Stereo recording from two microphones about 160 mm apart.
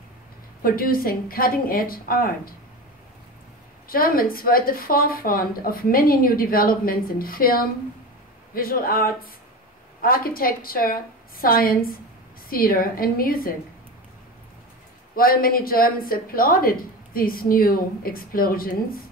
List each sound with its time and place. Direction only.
0.6 s a woman's voice: 65° left (ahead or behind)
3.9 s a woman's voice: 65° left (ahead or behind)
15.1 s a woman's voice: 65° left (ahead or behind)